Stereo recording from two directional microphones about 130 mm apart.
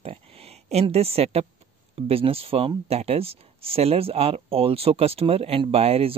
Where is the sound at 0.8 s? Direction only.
50° right (ahead or behind).